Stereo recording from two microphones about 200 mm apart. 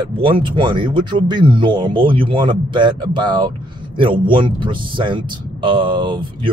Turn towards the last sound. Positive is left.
turn(degrees=-25)  # may be behind; listen again after turning